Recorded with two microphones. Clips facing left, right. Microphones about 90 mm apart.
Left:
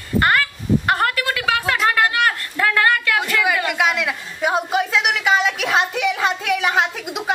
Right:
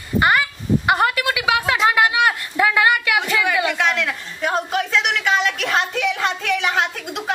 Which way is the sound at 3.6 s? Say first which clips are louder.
Even; 5° left (ahead or behind).